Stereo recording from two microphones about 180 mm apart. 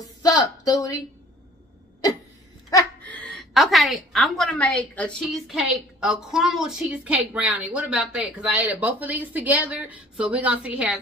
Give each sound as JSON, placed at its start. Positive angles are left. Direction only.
{"t": 0.0, "sound": "speech", "side_deg": 20}
{"t": 2.7, "sound": "speech", "side_deg": 10}